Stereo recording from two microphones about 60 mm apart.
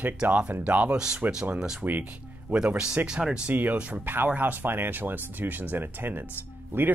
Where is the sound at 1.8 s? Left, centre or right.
Right.